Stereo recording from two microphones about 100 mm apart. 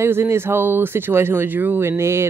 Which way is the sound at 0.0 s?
25° right (ahead or behind).